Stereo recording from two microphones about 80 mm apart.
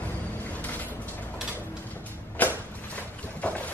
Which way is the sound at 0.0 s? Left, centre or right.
Left.